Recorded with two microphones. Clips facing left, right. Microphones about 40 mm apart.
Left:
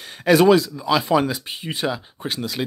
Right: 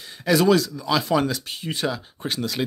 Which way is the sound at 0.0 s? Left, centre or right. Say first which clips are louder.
Left 5 dB; left.